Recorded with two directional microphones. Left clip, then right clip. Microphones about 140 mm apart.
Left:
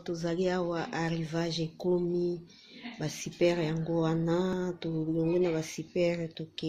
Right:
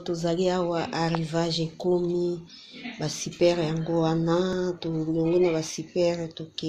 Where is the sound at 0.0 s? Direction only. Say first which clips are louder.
Right 6 dB; 25° left (ahead or behind).